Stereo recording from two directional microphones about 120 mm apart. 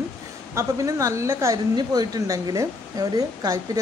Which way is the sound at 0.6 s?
25° right (ahead or behind).